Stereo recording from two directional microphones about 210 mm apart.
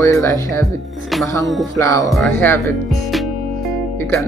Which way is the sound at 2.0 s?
Centre (ahead or behind).